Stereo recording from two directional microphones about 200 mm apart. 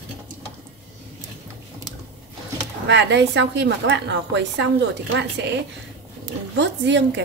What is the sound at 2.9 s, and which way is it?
A woman's voice, 60° right (ahead or behind).